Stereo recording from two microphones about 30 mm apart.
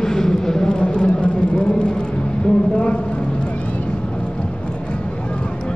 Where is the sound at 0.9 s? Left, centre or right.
Left.